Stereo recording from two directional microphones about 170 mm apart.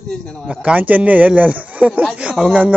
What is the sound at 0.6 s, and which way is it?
Speech, 10° right (ahead or behind).